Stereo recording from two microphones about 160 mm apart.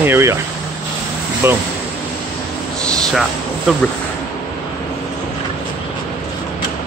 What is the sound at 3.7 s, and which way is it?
Speech, 5° right (ahead or behind).